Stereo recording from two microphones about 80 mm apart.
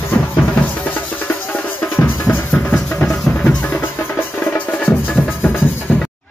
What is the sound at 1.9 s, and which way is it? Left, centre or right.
Drum, left.